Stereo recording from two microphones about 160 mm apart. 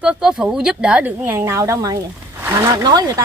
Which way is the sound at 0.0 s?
5° right (ahead or behind).